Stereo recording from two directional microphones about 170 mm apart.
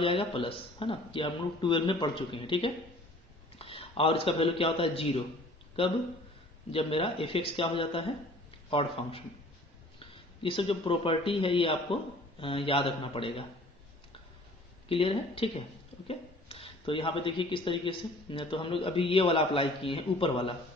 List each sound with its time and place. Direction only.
0.0 s a man's voice: 30° left (ahead or behind)
6.7 s a man's voice: 35° left (ahead or behind)
14.9 s speech: 35° left (ahead or behind)